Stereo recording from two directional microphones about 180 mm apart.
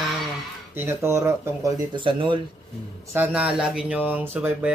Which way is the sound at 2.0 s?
25° right (ahead or behind).